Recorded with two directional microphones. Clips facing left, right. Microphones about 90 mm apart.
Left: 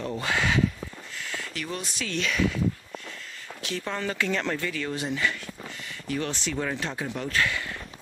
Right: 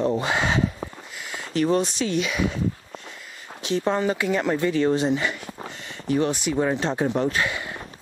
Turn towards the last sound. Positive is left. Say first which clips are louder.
# right 2 dB
turn(degrees=-20)  # may be behind; listen again after turning